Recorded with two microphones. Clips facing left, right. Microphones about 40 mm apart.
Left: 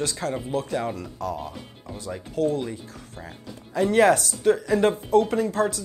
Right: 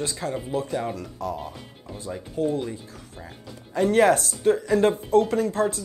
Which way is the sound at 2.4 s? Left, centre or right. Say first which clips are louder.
Left 2 dB; left.